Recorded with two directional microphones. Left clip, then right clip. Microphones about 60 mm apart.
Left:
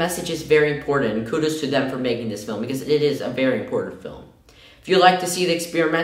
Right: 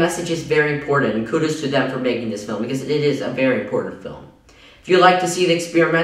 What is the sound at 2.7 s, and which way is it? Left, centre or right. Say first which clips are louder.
Speech: even; right.